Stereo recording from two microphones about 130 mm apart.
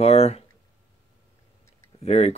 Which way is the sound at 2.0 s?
55° left (ahead or behind).